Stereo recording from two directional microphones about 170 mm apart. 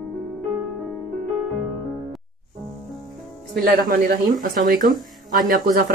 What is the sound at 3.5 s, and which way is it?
Speech, 55° right (ahead or behind).